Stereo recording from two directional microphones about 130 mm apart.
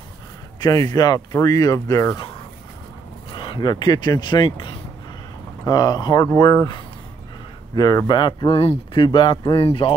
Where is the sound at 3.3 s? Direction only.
40° left (ahead or behind).